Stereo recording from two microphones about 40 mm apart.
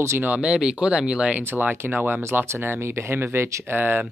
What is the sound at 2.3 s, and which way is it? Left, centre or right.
Speech, right.